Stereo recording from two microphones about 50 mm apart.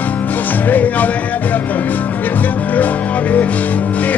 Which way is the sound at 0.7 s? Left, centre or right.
Left.